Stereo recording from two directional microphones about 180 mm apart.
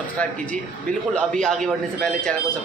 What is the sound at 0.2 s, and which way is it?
Speech, 5° left (ahead or behind).